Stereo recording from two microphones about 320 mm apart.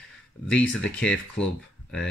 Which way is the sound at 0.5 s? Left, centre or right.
Centre.